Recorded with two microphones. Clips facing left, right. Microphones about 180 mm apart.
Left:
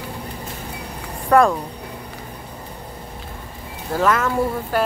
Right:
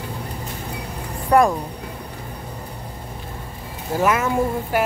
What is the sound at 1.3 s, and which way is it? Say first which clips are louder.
Speech: left 1 dB; 15° right (ahead or behind).